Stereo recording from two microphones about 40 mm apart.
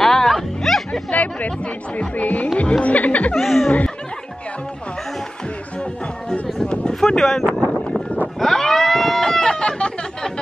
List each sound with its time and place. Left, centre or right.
0.0 s music: centre
1.1 s speech: left
2.0 s music: left
2.5 s speech: left
2.8 s music: left
3.3 s laughter: centre
6.3 s a sound: left
6.9 s speech: centre
8.4 s a sound: centre; by 10.3 s left